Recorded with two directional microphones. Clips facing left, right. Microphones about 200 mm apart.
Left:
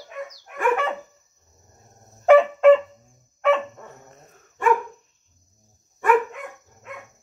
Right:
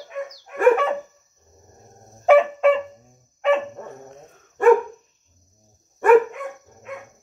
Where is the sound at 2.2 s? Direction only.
10° right (ahead or behind).